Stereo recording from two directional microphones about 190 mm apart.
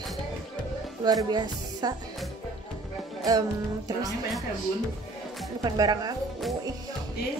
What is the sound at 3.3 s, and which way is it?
Speech, 20° right (ahead or behind).